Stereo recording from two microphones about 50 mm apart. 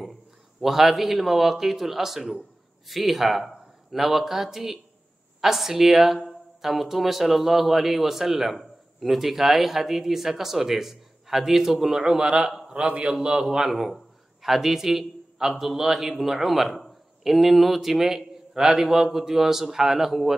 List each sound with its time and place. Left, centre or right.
0.0 s a man's voice: centre
12.2 s a man's voice: centre